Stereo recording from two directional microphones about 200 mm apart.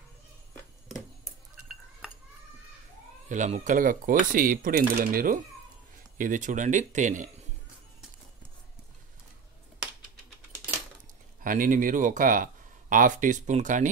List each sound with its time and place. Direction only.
3.3 s speech: 35° right (ahead or behind)
11.4 s speech: 40° right (ahead or behind)